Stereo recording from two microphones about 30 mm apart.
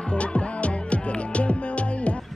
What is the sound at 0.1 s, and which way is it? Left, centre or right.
Music, left.